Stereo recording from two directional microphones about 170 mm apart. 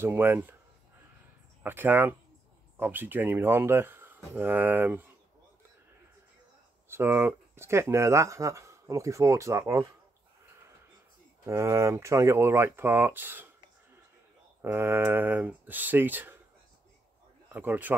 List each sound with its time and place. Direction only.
0.0 s speech: 15° right (ahead or behind)
1.6 s speech: 10° right (ahead or behind)
6.9 s speech: 15° right (ahead or behind)
11.4 s speech: 15° right (ahead or behind)
14.6 s speech: 15° right (ahead or behind)
17.5 s speech: 10° right (ahead or behind)